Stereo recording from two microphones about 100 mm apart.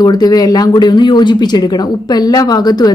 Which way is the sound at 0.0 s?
40° left (ahead or behind).